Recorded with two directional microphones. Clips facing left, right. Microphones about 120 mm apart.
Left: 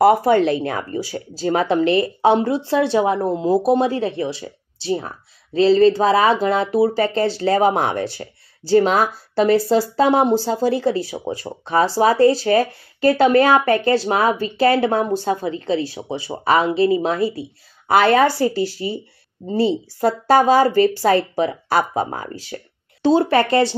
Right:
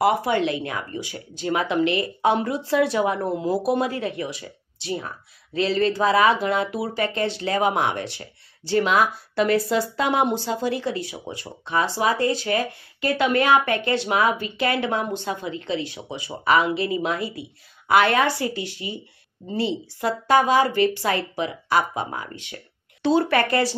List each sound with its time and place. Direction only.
0.0 s speech: 40° left (ahead or behind)